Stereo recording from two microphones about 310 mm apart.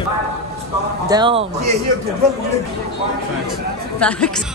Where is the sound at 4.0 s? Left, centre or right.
Centre.